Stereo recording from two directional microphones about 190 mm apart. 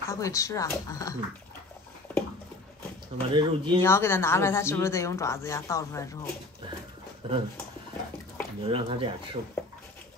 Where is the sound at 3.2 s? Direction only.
25° right (ahead or behind).